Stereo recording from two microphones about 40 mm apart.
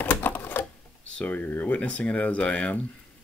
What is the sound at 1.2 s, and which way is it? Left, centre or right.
Speech, left.